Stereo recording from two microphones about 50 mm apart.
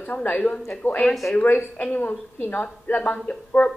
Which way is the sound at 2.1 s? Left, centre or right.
Left.